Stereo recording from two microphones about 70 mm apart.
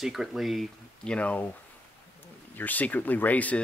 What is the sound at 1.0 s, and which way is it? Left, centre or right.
Speech, centre.